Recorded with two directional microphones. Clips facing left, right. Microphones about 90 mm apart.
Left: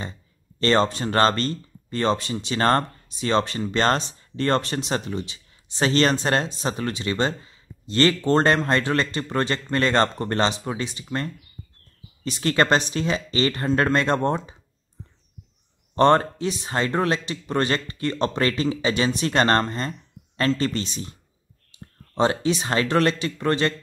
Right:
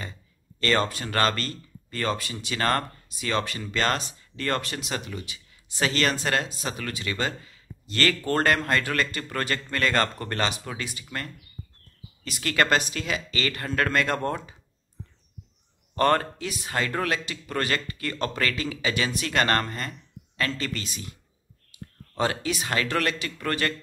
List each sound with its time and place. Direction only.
0.6 s speech: 30° left (ahead or behind)
12.3 s speech: 25° left (ahead or behind)
16.0 s speech: 25° left (ahead or behind)
21.7 s a sound: 25° left (ahead or behind)
22.1 s speech: 25° left (ahead or behind)